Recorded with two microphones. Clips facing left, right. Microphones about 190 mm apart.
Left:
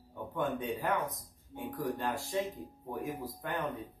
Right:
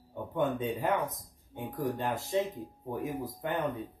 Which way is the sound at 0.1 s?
20° right (ahead or behind).